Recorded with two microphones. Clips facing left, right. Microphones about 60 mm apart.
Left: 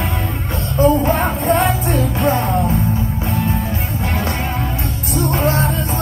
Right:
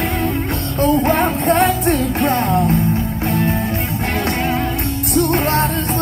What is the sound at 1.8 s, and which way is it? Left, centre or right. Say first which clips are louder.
Music: right 1 dB; right.